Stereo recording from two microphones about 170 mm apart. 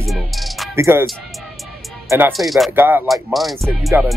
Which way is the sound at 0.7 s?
15° right (ahead or behind).